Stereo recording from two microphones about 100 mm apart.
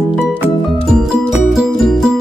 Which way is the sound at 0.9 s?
Centre (ahead or behind).